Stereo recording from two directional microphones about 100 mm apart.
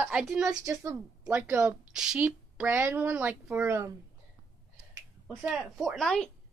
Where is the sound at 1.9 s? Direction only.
10° right (ahead or behind).